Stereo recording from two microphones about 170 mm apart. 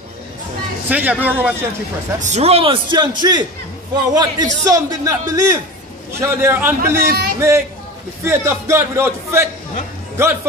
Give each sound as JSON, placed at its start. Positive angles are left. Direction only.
{"t": 0.8, "sound": "speech", "side_deg": -10}
{"t": 2.1, "sound": "a man's voice", "side_deg": -45}
{"t": 7.1, "sound": "a man's voice", "side_deg": -65}
{"t": 7.3, "sound": "speech", "side_deg": -15}